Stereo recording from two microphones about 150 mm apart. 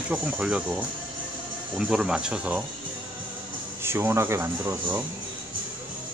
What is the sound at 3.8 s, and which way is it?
Speech, 15° right (ahead or behind).